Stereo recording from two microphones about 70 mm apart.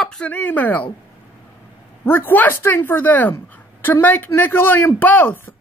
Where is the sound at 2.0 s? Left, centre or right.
Left.